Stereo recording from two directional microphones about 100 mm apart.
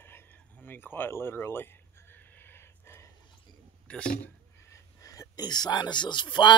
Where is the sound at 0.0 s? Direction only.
20° left (ahead or behind).